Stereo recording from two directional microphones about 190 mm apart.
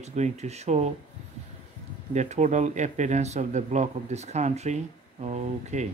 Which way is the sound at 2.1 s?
40° right (ahead or behind).